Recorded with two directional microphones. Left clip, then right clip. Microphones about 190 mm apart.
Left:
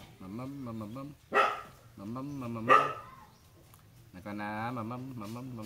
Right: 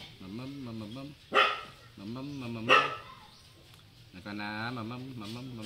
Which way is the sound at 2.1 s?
20° left (ahead or behind).